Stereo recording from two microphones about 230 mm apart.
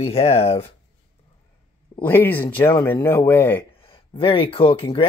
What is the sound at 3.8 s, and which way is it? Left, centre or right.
Speech, left.